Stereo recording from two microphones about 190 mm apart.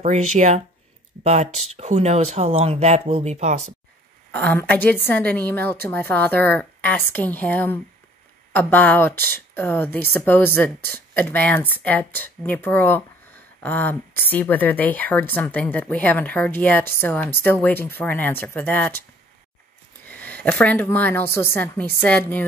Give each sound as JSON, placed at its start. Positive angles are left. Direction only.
{"t": 0.0, "sound": "speech", "side_deg": -40}
{"t": 4.3, "sound": "speech", "side_deg": 10}
{"t": 20.1, "sound": "speech", "side_deg": 10}